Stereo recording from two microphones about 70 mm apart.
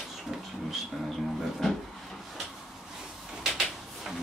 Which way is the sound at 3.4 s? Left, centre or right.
Centre.